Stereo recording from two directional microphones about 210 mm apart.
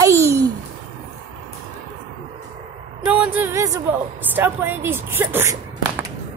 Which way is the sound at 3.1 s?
10° right (ahead or behind).